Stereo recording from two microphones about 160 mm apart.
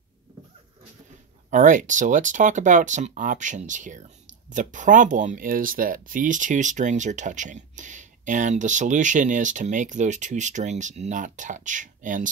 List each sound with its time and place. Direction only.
1.5 s speech: 50° right (ahead or behind)